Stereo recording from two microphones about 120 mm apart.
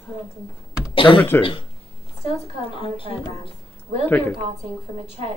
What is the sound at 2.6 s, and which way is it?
Speech, 50° left (ahead or behind).